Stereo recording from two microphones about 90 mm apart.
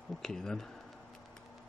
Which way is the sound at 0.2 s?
5° left (ahead or behind).